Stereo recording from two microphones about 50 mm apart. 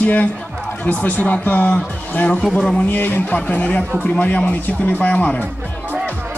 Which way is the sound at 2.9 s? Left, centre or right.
Left.